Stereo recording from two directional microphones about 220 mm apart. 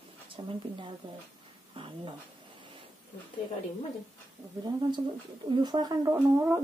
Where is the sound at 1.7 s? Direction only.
25° right (ahead or behind).